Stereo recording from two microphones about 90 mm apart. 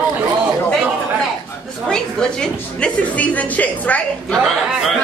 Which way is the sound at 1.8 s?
10° left (ahead or behind).